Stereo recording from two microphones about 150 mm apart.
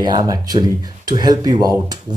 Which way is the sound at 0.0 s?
25° right (ahead or behind).